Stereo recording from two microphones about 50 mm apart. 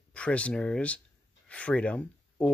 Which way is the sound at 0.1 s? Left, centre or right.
Left.